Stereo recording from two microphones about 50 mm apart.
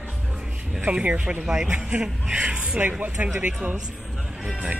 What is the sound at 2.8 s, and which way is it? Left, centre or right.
Speech, right.